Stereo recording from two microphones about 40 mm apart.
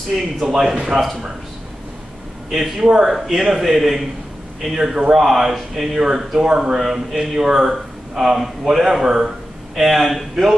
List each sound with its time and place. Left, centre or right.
0.5 s speech: centre
0.7 s speech: centre
2.5 s speech: centre
3.6 s speech: centre